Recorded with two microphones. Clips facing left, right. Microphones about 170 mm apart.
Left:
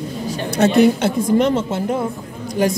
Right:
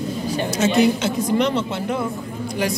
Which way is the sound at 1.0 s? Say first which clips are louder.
Left 4 dB; 50° left (ahead or behind).